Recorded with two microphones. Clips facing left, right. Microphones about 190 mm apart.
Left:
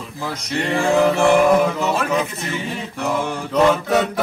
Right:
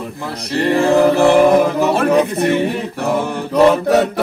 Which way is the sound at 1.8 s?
60° right (ahead or behind).